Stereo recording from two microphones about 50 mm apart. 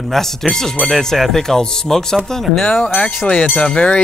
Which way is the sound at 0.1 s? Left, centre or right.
Centre.